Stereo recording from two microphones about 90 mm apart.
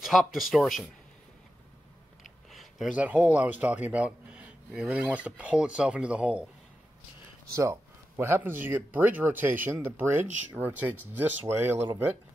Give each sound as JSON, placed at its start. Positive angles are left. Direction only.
{"t": 0.0, "sound": "speech", "side_deg": 0}
{"t": 2.2, "sound": "a sound", "side_deg": 0}
{"t": 2.9, "sound": "speech", "side_deg": -15}
{"t": 7.5, "sound": "speech", "side_deg": -35}